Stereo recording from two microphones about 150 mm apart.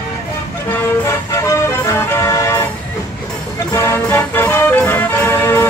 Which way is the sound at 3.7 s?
20° left (ahead or behind).